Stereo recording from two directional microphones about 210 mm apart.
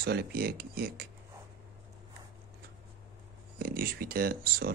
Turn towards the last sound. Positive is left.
turn(degrees=-45)  # may be behind; listen again after turning